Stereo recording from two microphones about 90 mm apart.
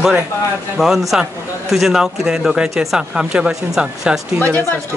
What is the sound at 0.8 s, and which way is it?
Speech, centre (ahead or behind).